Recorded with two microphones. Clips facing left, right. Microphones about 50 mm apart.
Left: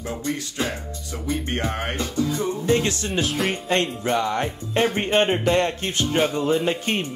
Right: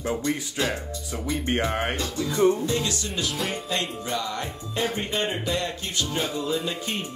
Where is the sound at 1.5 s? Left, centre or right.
Centre.